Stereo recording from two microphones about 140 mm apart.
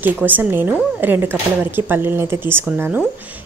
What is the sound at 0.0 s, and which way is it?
Speech, 15° right (ahead or behind).